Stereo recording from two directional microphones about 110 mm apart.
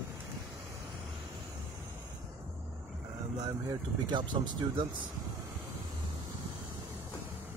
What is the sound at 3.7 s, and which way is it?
Speech, 40° right (ahead or behind).